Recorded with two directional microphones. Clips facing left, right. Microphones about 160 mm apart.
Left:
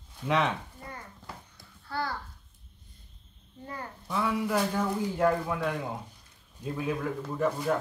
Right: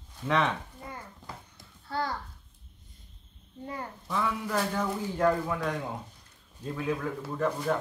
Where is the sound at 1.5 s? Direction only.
20° right (ahead or behind).